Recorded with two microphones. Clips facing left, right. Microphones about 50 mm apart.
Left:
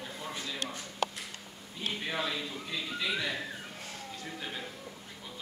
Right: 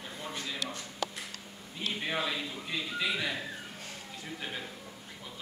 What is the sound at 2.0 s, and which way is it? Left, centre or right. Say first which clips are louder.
A man's voice: right 1 dB; centre.